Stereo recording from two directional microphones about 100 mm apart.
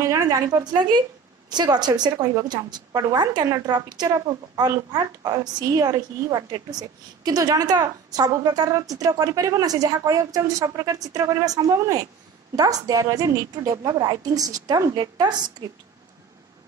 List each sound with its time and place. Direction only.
0.0 s a woman's voice: 35° right (ahead or behind)
1.5 s a woman's voice: 45° right (ahead or behind)